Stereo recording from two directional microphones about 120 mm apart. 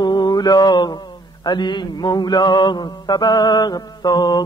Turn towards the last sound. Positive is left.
turn(degrees=35)  # may be behind; listen again after turning